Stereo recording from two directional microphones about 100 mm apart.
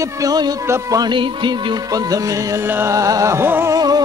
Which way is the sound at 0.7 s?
30° right (ahead or behind).